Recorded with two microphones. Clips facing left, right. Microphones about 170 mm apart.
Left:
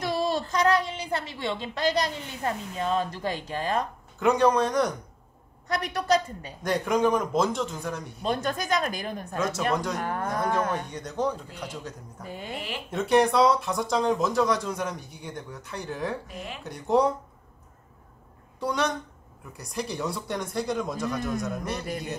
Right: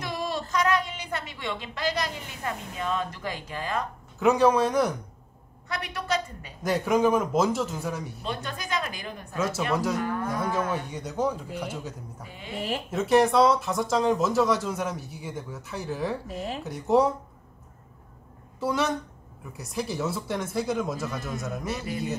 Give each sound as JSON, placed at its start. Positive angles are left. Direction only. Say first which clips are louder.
{"t": 0.0, "sound": "a woman's voice", "louder": "left 4 dB", "side_deg": 35}
{"t": 4.2, "sound": "speech", "louder": "right 1 dB", "side_deg": 0}
{"t": 5.7, "sound": "a woman's voice", "louder": "left 5 dB", "side_deg": 40}
{"t": 6.6, "sound": "speech", "louder": "right 1 dB", "side_deg": -5}
{"t": 8.2, "sound": "speech", "louder": "left 6 dB", "side_deg": 45}
{"t": 9.4, "sound": "speech", "louder": "right 1 dB", "side_deg": -5}
{"t": 9.9, "sound": "speech", "louder": "right 1 dB", "side_deg": 50}
{"t": 10.7, "sound": "speech", "louder": "even", "side_deg": -5}
{"t": 12.3, "sound": "a sound", "louder": "left 7 dB", "side_deg": 45}
{"t": 12.9, "sound": "speech", "louder": "right 1 dB", "side_deg": 0}
{"t": 18.6, "sound": "speech", "louder": "right 1 dB", "side_deg": -5}